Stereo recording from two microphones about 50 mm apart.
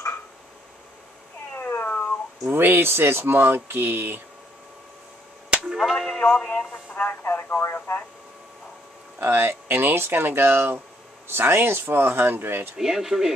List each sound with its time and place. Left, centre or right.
1.9 s cat: left
2.4 s speech: right
5.8 s a sound: centre
6.1 s radio: left
7.2 s radio: left
9.2 s speech: right
12.7 s speech: centre